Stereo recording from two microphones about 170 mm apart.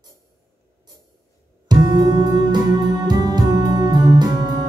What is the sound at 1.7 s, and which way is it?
Music, 25° right (ahead or behind).